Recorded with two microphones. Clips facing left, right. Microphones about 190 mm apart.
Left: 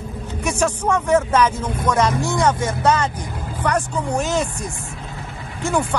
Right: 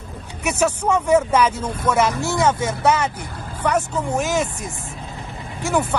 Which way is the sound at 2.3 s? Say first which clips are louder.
Right 2 dB; 25° right (ahead or behind).